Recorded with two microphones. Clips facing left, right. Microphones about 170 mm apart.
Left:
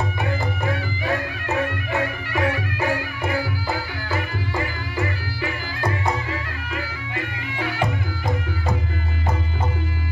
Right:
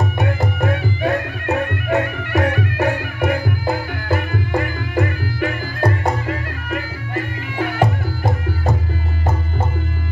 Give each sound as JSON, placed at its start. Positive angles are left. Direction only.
{"t": 0.0, "sound": "music", "side_deg": -70}